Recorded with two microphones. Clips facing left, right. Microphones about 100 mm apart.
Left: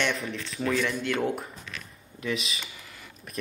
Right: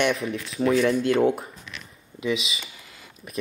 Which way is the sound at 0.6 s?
30° right (ahead or behind).